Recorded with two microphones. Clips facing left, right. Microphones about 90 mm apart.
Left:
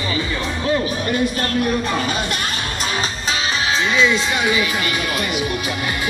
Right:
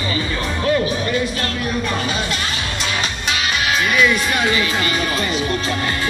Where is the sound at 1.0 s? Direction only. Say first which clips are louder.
Left 1 dB; 45° left (ahead or behind).